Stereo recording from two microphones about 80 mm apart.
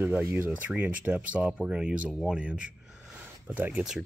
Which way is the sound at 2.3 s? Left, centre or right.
Centre.